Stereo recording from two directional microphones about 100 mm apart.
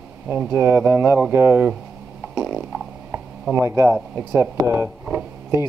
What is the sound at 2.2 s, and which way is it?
Fart, 5° right (ahead or behind).